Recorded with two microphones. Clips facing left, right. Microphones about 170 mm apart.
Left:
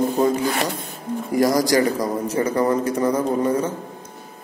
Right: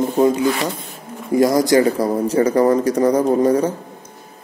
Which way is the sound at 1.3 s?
20° right (ahead or behind).